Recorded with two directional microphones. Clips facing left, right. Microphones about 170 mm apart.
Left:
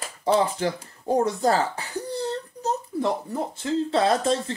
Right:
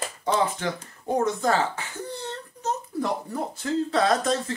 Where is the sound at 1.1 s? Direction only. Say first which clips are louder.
Left 2 dB; 35° left (ahead or behind).